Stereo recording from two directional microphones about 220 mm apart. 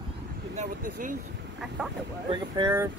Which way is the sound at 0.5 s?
35° right (ahead or behind).